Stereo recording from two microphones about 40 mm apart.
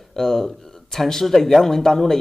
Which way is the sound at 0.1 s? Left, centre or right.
Centre.